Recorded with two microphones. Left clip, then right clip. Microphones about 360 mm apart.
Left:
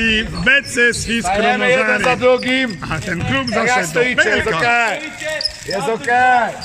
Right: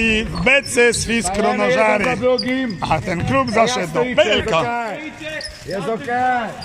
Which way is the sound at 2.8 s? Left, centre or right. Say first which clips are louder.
Right 3 dB; centre.